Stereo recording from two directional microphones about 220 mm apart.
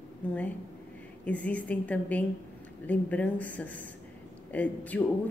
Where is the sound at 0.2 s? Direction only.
5° left (ahead or behind).